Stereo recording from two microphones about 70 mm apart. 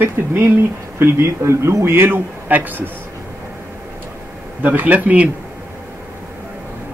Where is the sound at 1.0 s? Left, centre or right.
Right.